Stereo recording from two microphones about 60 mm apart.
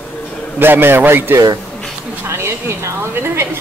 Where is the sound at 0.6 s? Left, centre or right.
Right.